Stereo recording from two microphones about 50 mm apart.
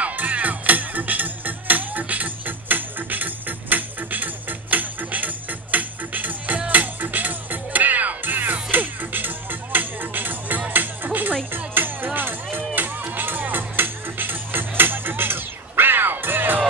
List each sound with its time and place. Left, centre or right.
0.0 s music: right